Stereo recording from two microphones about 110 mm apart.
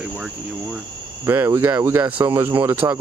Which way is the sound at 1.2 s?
20° right (ahead or behind).